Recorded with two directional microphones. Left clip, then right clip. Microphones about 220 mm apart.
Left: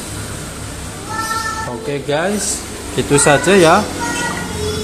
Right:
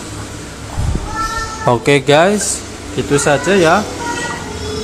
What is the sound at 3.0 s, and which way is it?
Speech, centre (ahead or behind).